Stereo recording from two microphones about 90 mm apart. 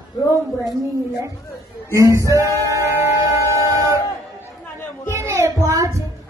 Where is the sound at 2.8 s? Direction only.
35° right (ahead or behind).